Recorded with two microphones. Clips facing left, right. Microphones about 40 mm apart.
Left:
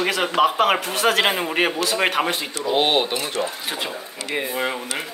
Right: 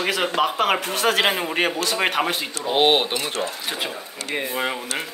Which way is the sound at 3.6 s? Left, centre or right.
Centre.